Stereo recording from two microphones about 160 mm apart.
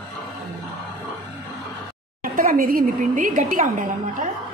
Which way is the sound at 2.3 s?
65° right (ahead or behind).